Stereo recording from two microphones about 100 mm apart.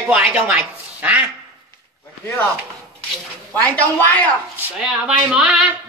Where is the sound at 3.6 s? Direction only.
15° left (ahead or behind).